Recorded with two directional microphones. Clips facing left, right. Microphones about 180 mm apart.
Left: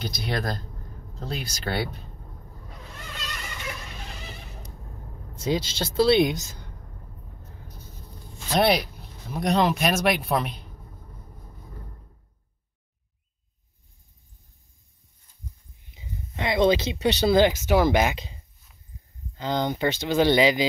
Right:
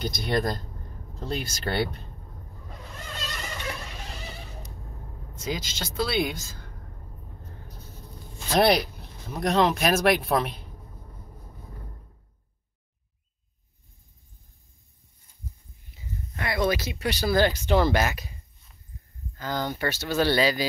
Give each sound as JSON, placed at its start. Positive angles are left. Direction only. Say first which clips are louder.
{"t": 0.0, "sound": "speech", "louder": "right 3 dB", "side_deg": 0}
{"t": 5.3, "sound": "speech", "louder": "left 6 dB", "side_deg": 30}
{"t": 8.5, "sound": "speech", "louder": "right 1 dB", "side_deg": 0}
{"t": 15.9, "sound": "speech", "louder": "right 1 dB", "side_deg": 20}
{"t": 17.5, "sound": "speech", "louder": "left 2 dB", "side_deg": 10}